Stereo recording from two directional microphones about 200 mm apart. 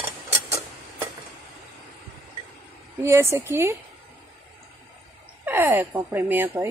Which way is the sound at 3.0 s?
15° right (ahead or behind).